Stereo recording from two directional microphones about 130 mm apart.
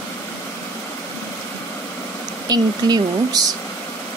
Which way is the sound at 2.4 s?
30° right (ahead or behind).